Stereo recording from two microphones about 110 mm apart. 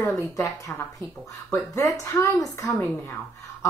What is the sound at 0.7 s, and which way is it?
Speech, 20° left (ahead or behind).